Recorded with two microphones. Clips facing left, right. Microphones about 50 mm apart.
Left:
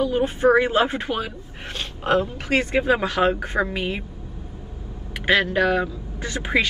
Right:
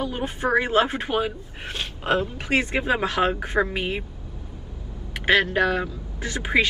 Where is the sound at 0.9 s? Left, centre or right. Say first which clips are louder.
Right 1 dB; right.